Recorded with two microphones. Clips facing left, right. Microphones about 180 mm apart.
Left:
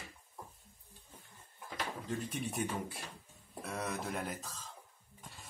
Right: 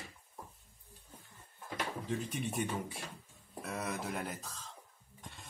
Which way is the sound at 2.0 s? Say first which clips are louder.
Even; centre (ahead or behind).